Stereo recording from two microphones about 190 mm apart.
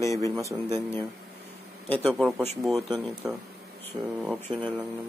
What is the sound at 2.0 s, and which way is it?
Speech, 5° right (ahead or behind).